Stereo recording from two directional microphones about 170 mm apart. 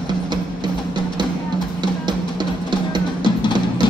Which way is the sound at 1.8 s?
25° right (ahead or behind).